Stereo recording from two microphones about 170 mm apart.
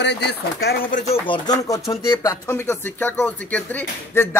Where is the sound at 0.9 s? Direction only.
50° left (ahead or behind).